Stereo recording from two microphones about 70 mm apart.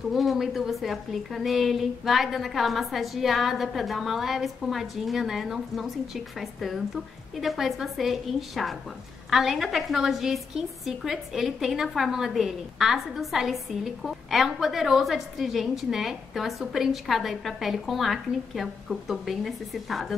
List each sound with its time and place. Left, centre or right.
0.1 s a woman's voice: centre